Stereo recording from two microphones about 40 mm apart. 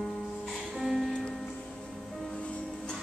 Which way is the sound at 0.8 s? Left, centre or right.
Centre.